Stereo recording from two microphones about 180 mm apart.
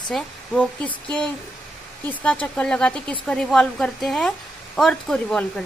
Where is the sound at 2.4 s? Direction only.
5° left (ahead or behind).